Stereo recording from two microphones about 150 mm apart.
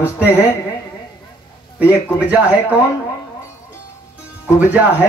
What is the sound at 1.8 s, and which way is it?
Speech, 10° right (ahead or behind).